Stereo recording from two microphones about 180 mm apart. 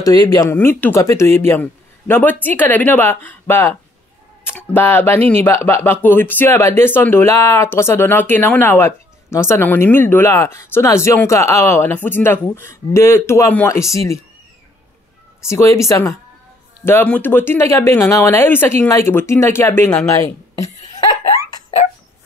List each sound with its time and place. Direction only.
0.0 s speech: 20° left (ahead or behind)
15.4 s speech: 15° left (ahead or behind)
20.6 s laughter: 20° left (ahead or behind)